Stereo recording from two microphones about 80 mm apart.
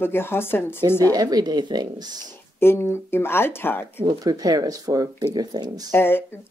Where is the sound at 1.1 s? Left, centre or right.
Right.